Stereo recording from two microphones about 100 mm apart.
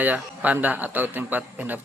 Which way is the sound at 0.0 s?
15° right (ahead or behind).